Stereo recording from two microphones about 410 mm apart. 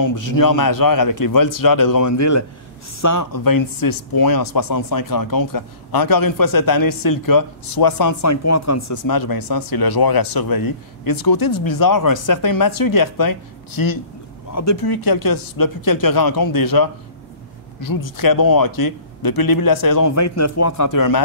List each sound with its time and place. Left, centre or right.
0.0 s speech: left
14.5 s speech: left
14.9 s speech: left